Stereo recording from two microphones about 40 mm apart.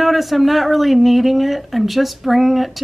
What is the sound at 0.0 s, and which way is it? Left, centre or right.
Speech, centre.